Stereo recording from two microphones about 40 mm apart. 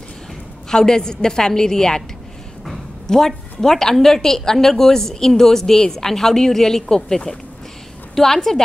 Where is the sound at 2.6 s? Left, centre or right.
Centre.